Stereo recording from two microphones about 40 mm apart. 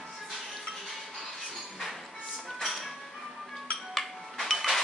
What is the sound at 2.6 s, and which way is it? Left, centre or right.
Music, centre.